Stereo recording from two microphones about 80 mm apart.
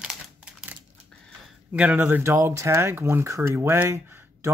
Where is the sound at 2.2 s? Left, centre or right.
Right.